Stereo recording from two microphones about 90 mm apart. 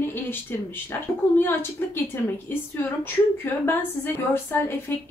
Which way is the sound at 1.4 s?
25° left (ahead or behind).